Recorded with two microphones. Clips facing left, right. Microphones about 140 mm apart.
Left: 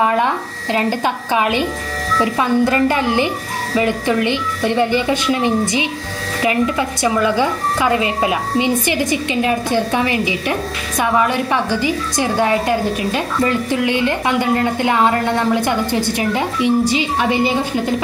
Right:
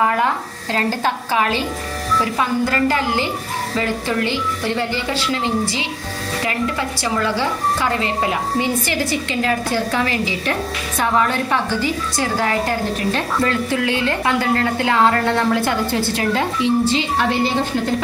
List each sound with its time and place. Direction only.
0.0 s a woman's voice: 20° left (ahead or behind)